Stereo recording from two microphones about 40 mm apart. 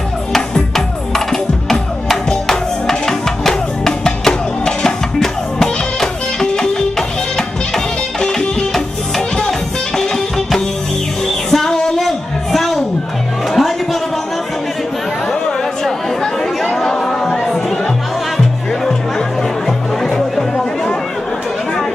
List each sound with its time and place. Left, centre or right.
0.7 s music: centre
9.5 s music: centre
12.0 s a sound: centre
13.5 s music: centre
15.4 s chatter: centre
20.0 s music: centre